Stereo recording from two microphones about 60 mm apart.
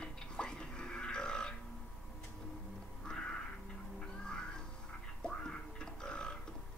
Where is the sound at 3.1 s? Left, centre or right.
Centre.